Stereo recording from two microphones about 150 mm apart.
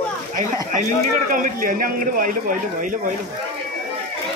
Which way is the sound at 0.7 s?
65° right (ahead or behind).